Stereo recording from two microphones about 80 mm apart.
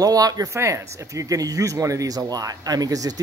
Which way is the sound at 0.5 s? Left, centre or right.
Right.